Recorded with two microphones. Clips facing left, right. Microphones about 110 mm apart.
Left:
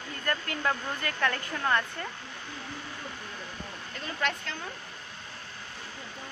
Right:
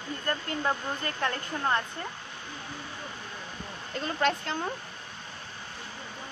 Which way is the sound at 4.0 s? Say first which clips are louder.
Right 5 dB; 35° right (ahead or behind).